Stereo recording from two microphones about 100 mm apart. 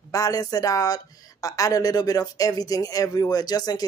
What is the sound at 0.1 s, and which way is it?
Speech, 35° left (ahead or behind).